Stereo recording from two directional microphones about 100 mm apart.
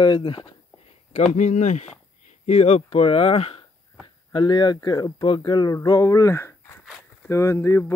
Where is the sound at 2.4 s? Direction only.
90° left; by 3.6 s 75° left (ahead or behind).